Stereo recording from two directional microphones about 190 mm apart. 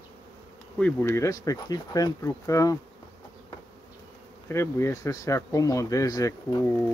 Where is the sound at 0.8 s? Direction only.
10° left (ahead or behind).